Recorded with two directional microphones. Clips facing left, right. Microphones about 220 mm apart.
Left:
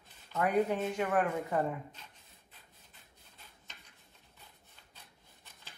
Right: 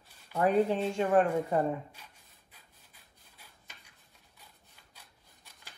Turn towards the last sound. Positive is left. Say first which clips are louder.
# even
turn(degrees=-10)  # may be behind; listen again after turning